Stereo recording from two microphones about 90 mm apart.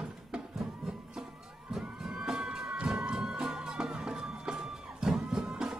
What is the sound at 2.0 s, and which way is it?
Music, 10° right (ahead or behind).